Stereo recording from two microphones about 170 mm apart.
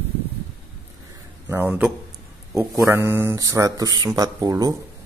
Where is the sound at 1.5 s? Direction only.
10° right (ahead or behind).